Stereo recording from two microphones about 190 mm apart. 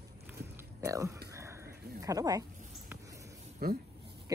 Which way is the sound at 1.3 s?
15° right (ahead or behind).